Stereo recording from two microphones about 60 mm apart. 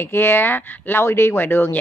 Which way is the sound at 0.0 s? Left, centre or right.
Left.